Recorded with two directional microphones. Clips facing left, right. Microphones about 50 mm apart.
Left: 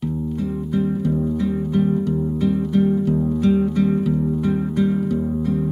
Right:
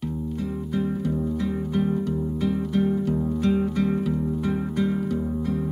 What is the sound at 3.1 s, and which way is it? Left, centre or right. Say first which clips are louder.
Music: left 5 dB; centre.